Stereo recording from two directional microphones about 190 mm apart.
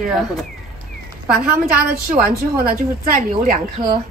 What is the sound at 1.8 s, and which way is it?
A woman's voice, 55° right (ahead or behind).